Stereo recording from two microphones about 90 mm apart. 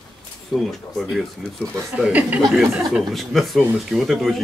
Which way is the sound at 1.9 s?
15° right (ahead or behind).